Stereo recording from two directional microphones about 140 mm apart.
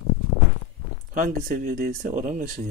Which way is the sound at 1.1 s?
80° right.